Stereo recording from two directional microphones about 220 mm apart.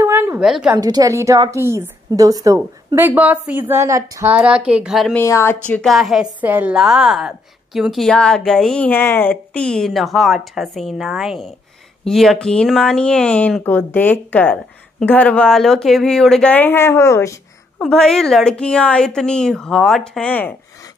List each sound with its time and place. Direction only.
0.0 s a sound: 10° right (ahead or behind)
0.7 s a woman's voice: 15° right (ahead or behind); by 5.2 s centre (ahead or behind)
5.2 s speech: 10° left (ahead or behind)
5.7 s speech: centre (ahead or behind)
17.8 s speech: 5° left (ahead or behind)